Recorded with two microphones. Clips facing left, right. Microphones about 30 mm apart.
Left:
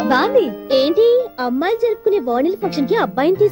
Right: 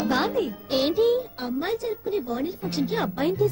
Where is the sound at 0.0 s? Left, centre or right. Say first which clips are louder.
Left 10 dB; left.